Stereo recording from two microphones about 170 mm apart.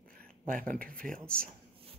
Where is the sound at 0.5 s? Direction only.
55° right (ahead or behind).